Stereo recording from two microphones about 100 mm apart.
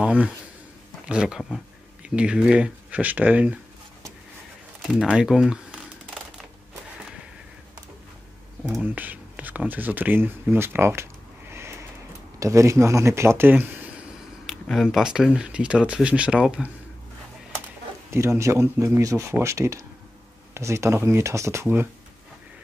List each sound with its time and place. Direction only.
0.0 s speech: 10° right (ahead or behind)
5.0 s speech: 5° right (ahead or behind)
8.8 s speech: 15° right (ahead or behind)
12.4 s speech: 30° right (ahead or behind)
14.4 s speech: centre (ahead or behind)
18.1 s speech: 25° right (ahead or behind)